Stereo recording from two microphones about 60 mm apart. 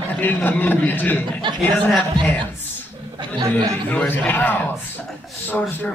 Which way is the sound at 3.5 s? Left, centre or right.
Left.